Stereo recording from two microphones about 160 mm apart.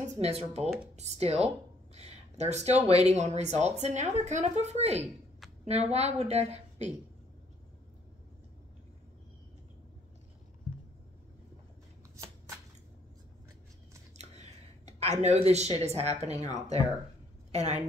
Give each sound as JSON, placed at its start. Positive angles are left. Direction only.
{"t": 0.2, "sound": "a woman's voice", "side_deg": -40}
{"t": 14.1, "sound": "a sound", "side_deg": -45}
{"t": 15.8, "sound": "a woman's voice", "side_deg": -40}
{"t": 17.5, "sound": "a woman's voice", "side_deg": -45}